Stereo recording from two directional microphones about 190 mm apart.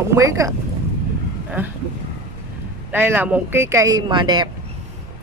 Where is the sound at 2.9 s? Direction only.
10° right (ahead or behind).